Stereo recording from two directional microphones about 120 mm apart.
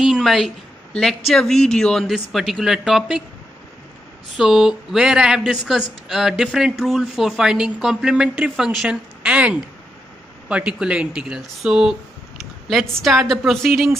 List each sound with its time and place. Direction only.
0.0 s a sound: centre (ahead or behind)
0.9 s speech: 5° left (ahead or behind)
4.4 s speech: centre (ahead or behind)